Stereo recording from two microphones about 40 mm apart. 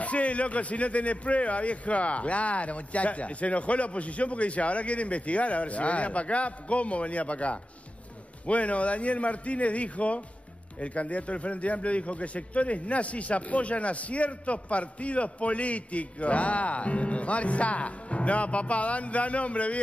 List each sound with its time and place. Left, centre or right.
0.0 s a man's voice: left